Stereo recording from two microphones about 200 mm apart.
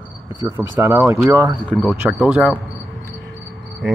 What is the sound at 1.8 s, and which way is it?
Speech, centre (ahead or behind).